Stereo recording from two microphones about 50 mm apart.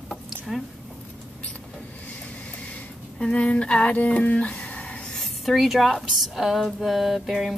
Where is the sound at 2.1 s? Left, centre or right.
Left.